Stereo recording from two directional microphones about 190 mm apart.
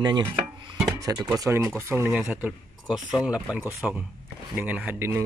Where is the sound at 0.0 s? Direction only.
20° right (ahead or behind).